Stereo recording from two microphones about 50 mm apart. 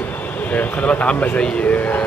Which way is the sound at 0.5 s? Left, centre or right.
Left.